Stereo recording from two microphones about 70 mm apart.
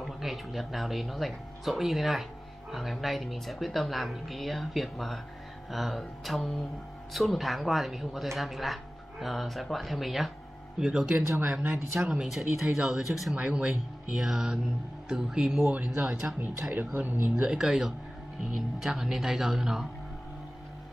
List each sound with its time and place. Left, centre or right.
0.0 s speech: centre
11.1 s speech: right
12.1 s speech: centre
15.7 s speech: centre
16.7 s speech: right
17.5 s speech: centre